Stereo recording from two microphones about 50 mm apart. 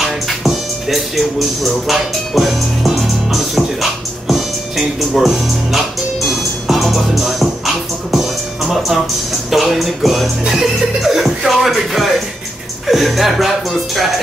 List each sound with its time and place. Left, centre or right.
0.0 s music: centre
9.5 s speech: centre